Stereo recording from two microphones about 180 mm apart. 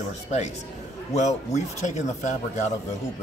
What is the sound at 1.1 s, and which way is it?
Speech, 40° left (ahead or behind).